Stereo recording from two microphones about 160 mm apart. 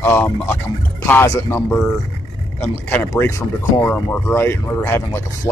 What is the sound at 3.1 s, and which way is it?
Speech, 20° left (ahead or behind).